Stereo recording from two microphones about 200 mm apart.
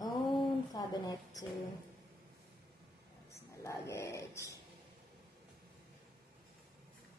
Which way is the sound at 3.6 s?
15° left (ahead or behind).